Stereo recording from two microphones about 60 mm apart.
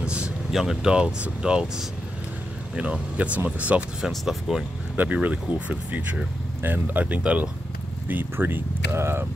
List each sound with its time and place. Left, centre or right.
0.0 s vehicle: centre
0.5 s speech: centre
2.7 s speech: centre
4.1 s speech: centre
4.9 s speech: right
8.1 s speech: right